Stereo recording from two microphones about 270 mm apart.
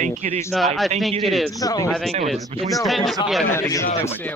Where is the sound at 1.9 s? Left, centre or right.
Centre.